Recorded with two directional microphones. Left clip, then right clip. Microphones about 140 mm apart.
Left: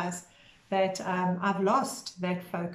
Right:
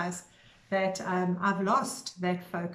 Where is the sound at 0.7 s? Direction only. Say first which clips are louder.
Left 1 dB; 10° left (ahead or behind).